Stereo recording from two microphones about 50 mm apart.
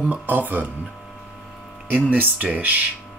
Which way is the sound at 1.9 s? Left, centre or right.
Right.